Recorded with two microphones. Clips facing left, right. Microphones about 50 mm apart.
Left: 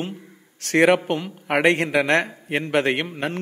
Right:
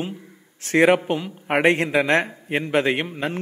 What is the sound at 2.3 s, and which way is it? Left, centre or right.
Speech, centre.